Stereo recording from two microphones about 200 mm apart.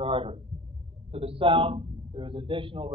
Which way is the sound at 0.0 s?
25° right (ahead or behind).